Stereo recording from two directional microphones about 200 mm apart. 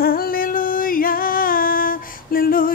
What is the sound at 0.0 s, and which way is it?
Music, 45° left (ahead or behind).